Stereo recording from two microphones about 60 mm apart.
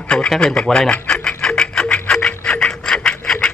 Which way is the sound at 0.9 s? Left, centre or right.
Centre.